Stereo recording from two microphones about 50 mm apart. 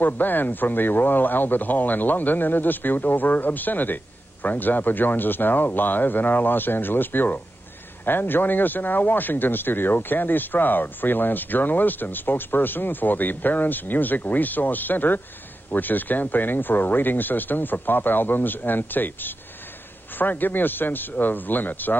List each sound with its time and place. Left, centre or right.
0.0 s a man's voice: left